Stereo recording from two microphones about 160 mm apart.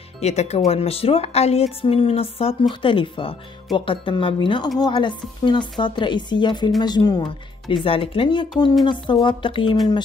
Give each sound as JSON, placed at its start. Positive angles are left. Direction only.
{"t": 0.2, "sound": "a woman's voice", "side_deg": 45}